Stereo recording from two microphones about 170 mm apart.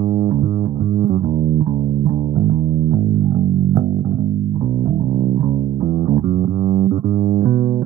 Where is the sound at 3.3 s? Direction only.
30° right (ahead or behind).